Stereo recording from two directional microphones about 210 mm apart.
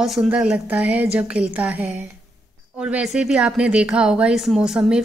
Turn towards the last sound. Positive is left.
turn(degrees=-5)  # may be behind; listen again after turning